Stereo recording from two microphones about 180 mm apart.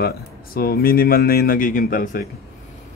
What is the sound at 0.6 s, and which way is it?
A man's voice, 55° left (ahead or behind).